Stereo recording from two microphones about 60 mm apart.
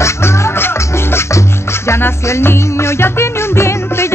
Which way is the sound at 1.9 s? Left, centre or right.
Left.